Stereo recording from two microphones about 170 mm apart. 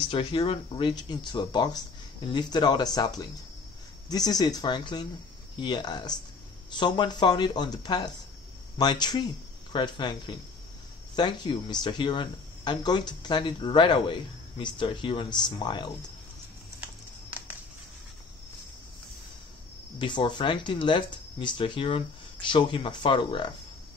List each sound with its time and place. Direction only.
0.1 s speech: 30° left (ahead or behind)
4.1 s speech: 20° left (ahead or behind)
20.0 s speech: 25° left (ahead or behind)